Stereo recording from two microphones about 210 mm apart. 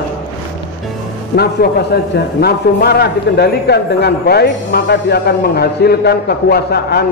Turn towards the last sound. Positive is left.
turn(degrees=50)  # may be behind; listen again after turning